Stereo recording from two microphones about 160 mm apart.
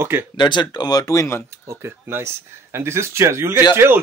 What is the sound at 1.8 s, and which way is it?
Speech, 15° right (ahead or behind).